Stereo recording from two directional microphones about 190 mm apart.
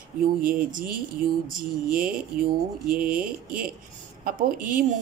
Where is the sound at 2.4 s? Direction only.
50° right (ahead or behind).